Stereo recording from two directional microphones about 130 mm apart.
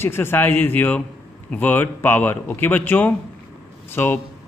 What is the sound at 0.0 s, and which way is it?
A man's voice, 20° left (ahead or behind).